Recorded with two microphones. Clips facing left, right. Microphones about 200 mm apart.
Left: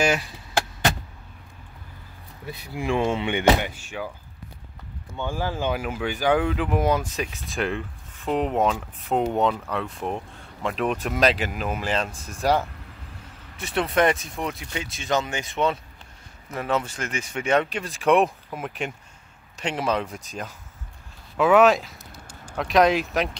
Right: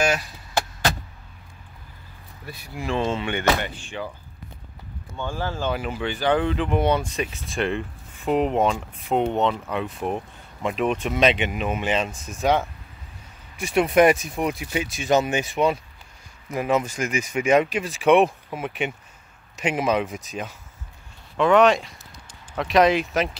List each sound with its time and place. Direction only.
2.4 s speech: 20° left (ahead or behind)
5.1 s speech: 15° left (ahead or behind)
9.7 s speech: 5° right (ahead or behind)
13.8 s speech: 20° right (ahead or behind); by 23.3 s centre (ahead or behind)